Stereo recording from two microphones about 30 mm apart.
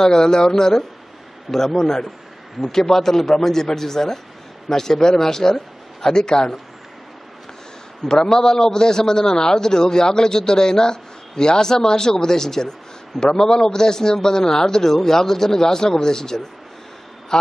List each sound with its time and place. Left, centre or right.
0.0 s a man's voice: left
8.0 s a man's voice: left
17.3 s a sound: centre